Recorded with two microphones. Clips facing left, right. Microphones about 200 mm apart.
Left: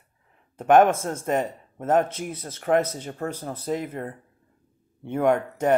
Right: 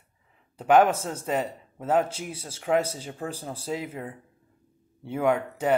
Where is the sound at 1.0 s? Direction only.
50° left (ahead or behind).